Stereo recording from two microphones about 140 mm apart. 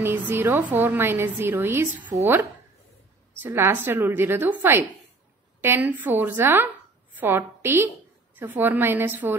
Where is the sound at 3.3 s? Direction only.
15° right (ahead or behind).